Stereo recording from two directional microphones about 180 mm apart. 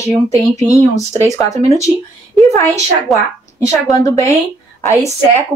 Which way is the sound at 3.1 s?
Centre (ahead or behind).